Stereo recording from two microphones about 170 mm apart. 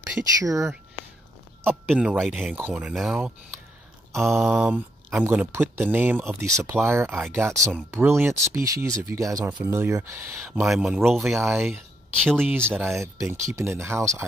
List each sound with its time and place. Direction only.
0.4 s speech: 20° right (ahead or behind)
1.9 s speech: 5° right (ahead or behind)
4.1 s mantra: centre (ahead or behind)
4.5 s speech: 10° right (ahead or behind)
11.3 s speech: 15° right (ahead or behind)